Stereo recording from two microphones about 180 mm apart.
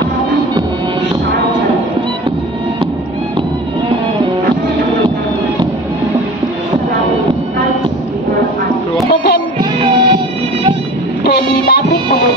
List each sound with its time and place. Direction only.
9.6 s music: 25° right (ahead or behind)
11.2 s music: 65° left (ahead or behind)